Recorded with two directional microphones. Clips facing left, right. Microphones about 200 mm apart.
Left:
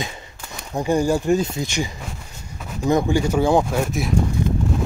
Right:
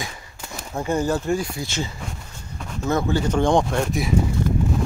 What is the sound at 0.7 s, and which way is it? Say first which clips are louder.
Speech: left 3 dB; 15° left (ahead or behind).